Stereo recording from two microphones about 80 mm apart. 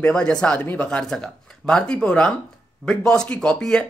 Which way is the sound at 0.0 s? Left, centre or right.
Centre.